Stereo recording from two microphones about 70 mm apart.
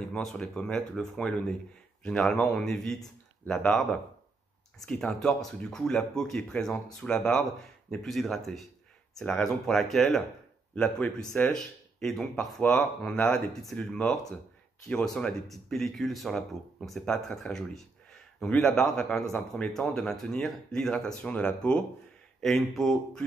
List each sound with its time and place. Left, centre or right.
0.1 s speech: centre
10.7 s speech: centre
11.5 s speech: centre
13.7 s speech: centre
22.4 s speech: centre